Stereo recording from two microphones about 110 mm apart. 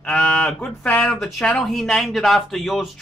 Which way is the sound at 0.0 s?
10° left (ahead or behind).